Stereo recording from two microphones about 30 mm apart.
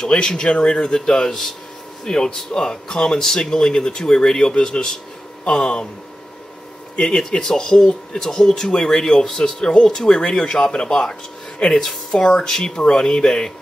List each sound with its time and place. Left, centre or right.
0.1 s speech: left
7.0 s speech: left
9.4 s speech: left